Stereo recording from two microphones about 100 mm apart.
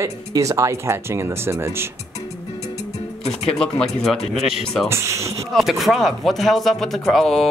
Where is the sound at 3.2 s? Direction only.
75° left (ahead or behind).